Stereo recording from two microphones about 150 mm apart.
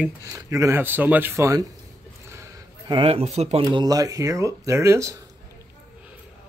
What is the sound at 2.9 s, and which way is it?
Speech, 40° right (ahead or behind).